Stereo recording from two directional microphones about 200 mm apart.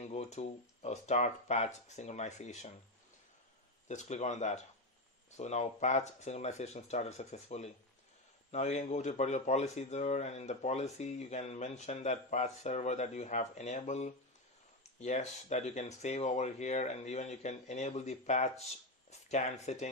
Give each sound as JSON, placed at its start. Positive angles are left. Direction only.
{"t": 0.0, "sound": "speech", "side_deg": 35}
{"t": 3.9, "sound": "speech", "side_deg": 35}